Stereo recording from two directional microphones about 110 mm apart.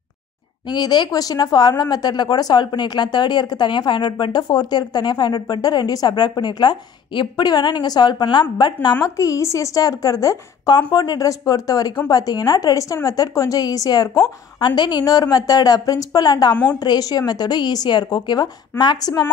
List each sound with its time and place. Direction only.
0.7 s speech: 40° left (ahead or behind)
9.0 s speech: 30° left (ahead or behind)